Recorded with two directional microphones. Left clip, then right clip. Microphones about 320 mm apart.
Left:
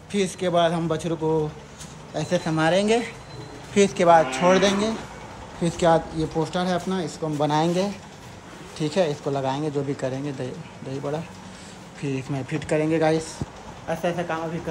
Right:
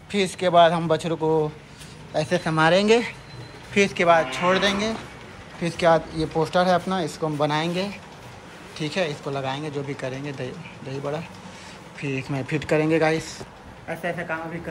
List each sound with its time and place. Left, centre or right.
0.1 s speech: centre